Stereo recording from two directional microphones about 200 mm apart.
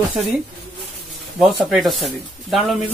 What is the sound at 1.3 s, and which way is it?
Speech, centre (ahead or behind).